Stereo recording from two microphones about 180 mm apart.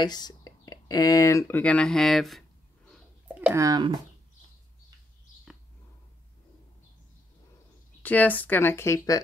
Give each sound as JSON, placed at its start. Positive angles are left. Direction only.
{"t": 0.0, "sound": "speech", "side_deg": 20}
{"t": 1.6, "sound": "speech", "side_deg": 5}
{"t": 2.9, "sound": "a sound", "side_deg": -10}
{"t": 8.0, "sound": "speech", "side_deg": 10}